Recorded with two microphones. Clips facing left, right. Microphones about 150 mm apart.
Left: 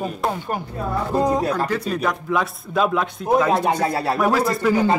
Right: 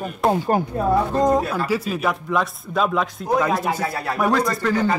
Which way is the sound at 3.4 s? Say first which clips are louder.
Left 3 dB; 25° left (ahead or behind).